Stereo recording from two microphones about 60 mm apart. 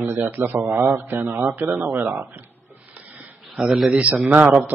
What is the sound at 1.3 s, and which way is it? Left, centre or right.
Speech, right.